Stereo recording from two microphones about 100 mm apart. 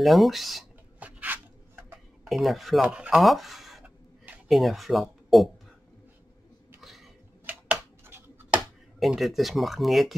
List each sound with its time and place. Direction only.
0.0 s speech: centre (ahead or behind)
0.9 s a sound: 15° right (ahead or behind)
2.2 s speech: centre (ahead or behind)
6.8 s cough: centre (ahead or behind)
7.4 s typing: 15° right (ahead or behind)
9.0 s speech: centre (ahead or behind)